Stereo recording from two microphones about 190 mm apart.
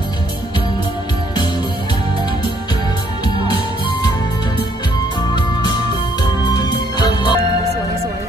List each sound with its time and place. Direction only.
6.6 s music: 20° left (ahead or behind)